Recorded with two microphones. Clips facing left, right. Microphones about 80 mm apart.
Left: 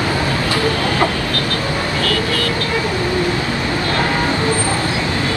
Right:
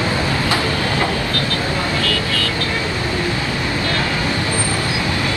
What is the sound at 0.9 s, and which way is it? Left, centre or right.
Vehicle, left.